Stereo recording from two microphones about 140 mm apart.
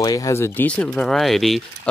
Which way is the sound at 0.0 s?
25° left (ahead or behind).